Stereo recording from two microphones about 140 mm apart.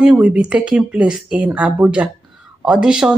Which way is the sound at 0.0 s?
10° right (ahead or behind).